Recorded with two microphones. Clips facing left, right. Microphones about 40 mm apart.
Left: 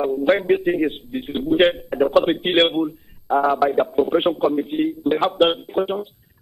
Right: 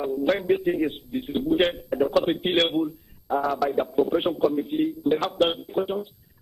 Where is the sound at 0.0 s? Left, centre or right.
Left.